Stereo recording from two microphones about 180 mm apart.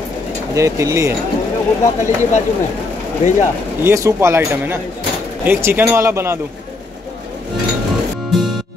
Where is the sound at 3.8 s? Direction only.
15° right (ahead or behind).